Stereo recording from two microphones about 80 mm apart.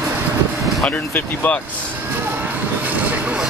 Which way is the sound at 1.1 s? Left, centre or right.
Left.